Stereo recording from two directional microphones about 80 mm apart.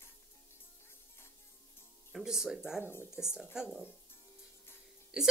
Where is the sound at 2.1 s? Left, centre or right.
Centre.